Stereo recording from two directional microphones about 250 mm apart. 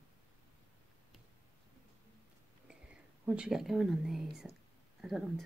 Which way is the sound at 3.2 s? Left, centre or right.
Centre.